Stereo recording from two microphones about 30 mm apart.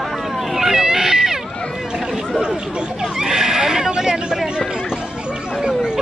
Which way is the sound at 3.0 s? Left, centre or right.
Centre.